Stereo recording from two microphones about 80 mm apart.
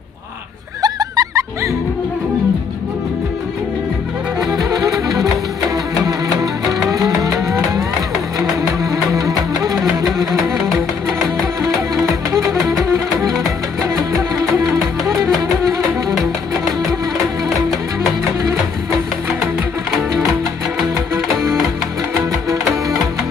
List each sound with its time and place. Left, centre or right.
0.8 s music: right
4.5 s music: right
8.9 s music: right
11.6 s music: right
14.1 s music: right